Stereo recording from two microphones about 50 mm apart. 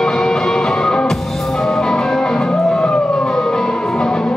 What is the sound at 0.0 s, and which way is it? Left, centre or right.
Music, centre.